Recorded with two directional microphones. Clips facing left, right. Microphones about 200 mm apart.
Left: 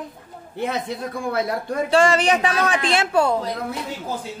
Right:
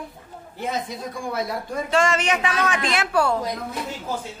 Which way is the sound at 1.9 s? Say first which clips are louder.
Left 4 dB; 35° left (ahead or behind).